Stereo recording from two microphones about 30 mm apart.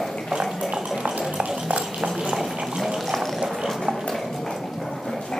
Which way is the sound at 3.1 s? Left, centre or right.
Centre.